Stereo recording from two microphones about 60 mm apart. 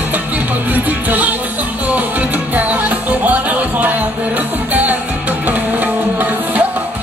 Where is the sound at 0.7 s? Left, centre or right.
Right.